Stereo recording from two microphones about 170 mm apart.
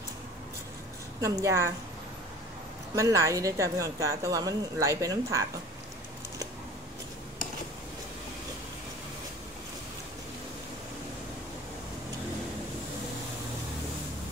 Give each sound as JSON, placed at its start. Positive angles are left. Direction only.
{"t": 1.2, "sound": "a woman's voice", "side_deg": -20}
{"t": 3.0, "sound": "speech", "side_deg": -20}